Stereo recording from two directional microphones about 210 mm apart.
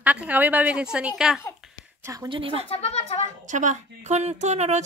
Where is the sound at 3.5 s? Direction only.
35° right (ahead or behind).